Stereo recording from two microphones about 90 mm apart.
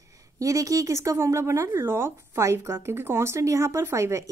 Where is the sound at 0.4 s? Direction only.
35° right (ahead or behind).